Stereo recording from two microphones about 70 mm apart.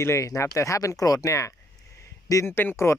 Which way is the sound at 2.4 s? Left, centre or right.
Left.